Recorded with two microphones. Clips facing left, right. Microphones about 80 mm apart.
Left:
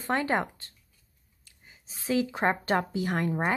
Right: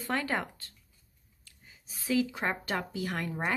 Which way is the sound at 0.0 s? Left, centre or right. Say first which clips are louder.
Left 4 dB; left.